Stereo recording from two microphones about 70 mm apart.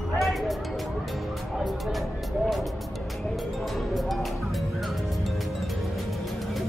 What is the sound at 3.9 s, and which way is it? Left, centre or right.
Speech, centre.